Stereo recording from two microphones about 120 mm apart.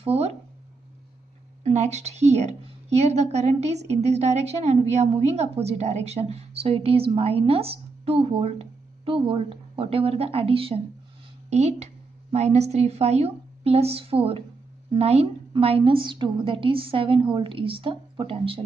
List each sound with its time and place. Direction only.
0.0 s a sound: 55° right (ahead or behind)
1.6 s a woman's voice: 70° right (ahead or behind); by 10.8 s 50° right (ahead or behind)
11.5 s a woman's voice: 65° right (ahead or behind); by 18.6 s 50° right (ahead or behind)